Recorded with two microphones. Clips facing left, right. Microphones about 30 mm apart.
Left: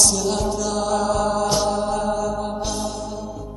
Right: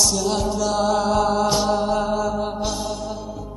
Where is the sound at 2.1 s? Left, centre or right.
Centre.